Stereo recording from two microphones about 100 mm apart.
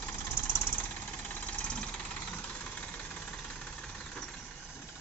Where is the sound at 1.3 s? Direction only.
15° left (ahead or behind).